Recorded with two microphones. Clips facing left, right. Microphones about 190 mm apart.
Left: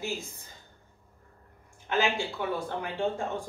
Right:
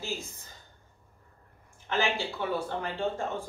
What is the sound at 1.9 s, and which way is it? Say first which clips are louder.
Speech: left 1 dB; 15° left (ahead or behind).